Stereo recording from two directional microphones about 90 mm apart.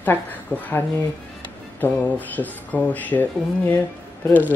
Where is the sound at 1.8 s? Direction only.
20° left (ahead or behind).